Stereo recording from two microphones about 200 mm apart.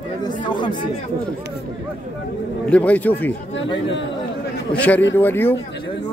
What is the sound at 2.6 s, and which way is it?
Speech, 5° left (ahead or behind).